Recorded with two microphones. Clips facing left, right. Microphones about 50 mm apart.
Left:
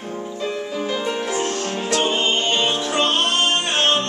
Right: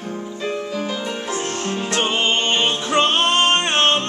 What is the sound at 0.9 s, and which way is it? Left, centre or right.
Music, centre.